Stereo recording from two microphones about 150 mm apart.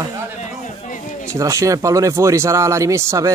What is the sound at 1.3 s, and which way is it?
Speech, 20° right (ahead or behind).